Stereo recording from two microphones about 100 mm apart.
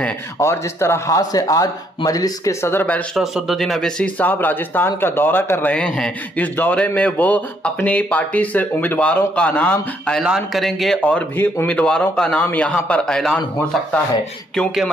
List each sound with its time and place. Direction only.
0.4 s speech: 30° left (ahead or behind)
2.6 s speech: 20° left (ahead or behind)
3.2 s speech: centre (ahead or behind)
4.2 s a man's voice: 15° left (ahead or behind)
10.2 s a man's voice: 5° right (ahead or behind)
14.5 s speech: 5° left (ahead or behind)